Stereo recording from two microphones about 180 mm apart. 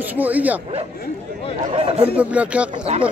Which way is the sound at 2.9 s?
40° right (ahead or behind).